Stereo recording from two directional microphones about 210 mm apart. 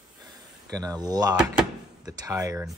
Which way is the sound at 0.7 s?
15° right (ahead or behind).